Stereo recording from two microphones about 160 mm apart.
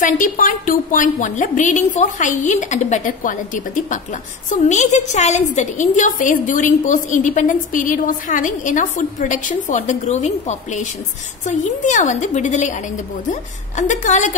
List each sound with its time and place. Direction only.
0.0 s a woman's voice: 55° left (ahead or behind)